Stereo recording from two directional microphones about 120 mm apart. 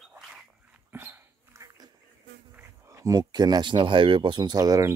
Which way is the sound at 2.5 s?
15° right (ahead or behind).